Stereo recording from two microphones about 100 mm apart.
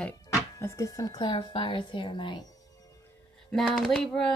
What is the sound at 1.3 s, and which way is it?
Speech, 55° left (ahead or behind).